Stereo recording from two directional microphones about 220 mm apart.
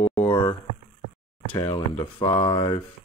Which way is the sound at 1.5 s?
25° left (ahead or behind).